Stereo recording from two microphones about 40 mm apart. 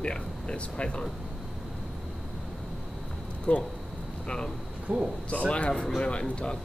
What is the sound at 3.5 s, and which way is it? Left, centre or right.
Speech, left.